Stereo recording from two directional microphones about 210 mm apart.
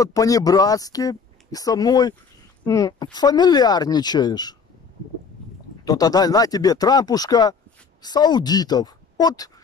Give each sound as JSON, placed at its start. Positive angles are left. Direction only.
{"t": 0.0, "sound": "speech", "side_deg": 15}
{"t": 5.9, "sound": "speech", "side_deg": 20}